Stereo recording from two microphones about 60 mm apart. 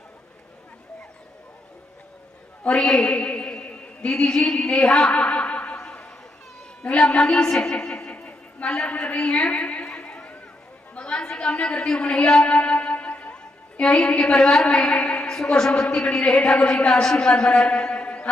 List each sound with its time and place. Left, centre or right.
2.7 s a woman's voice: centre
3.0 s a sound: left
6.8 s a woman's voice: centre
12.4 s music: left
13.9 s a woman's voice: centre